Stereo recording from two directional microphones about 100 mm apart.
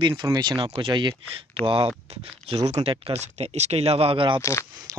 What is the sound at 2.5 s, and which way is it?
Speech, 80° right.